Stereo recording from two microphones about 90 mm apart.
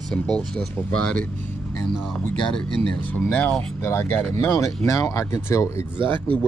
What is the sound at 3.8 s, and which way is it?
Speech, 30° left (ahead or behind).